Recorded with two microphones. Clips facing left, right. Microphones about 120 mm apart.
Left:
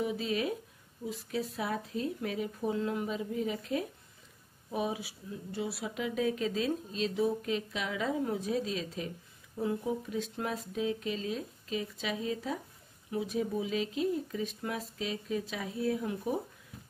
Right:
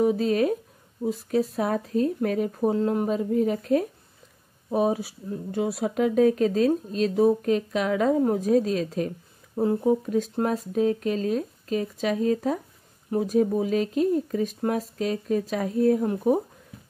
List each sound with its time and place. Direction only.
0.0 s speech: 45° right (ahead or behind)